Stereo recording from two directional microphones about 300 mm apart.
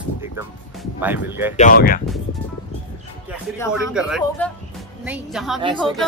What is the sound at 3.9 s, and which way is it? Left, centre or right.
A man's voice, centre.